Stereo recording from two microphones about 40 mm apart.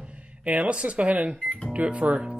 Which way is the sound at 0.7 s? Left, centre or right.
Right.